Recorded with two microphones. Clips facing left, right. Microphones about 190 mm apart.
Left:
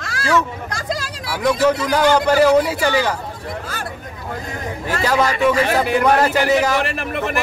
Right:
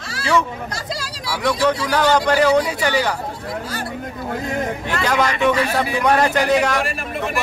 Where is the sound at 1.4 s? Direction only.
10° left (ahead or behind).